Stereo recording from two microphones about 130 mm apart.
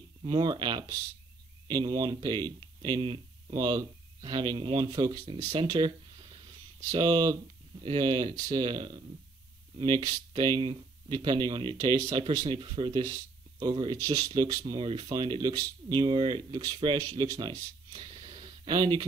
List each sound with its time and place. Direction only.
0.2 s speech: 35° right (ahead or behind)